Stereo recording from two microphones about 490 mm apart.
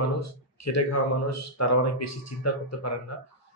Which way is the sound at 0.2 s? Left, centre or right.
Left.